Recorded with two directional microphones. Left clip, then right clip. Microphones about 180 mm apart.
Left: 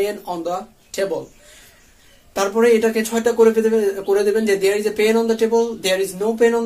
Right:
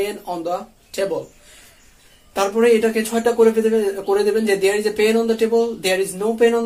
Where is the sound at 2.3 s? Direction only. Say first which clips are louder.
Even; centre (ahead or behind).